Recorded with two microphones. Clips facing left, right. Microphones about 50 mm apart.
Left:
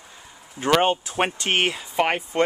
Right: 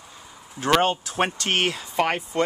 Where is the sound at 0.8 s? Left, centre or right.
Left.